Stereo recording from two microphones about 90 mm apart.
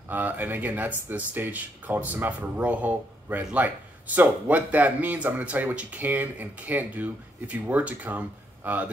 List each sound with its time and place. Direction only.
0.1 s speech: 20° right (ahead or behind)